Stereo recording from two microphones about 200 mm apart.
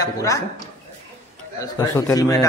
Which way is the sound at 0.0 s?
15° left (ahead or behind).